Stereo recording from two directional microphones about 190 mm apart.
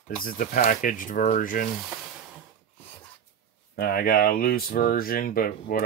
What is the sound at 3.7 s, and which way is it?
Speech, 50° left (ahead or behind).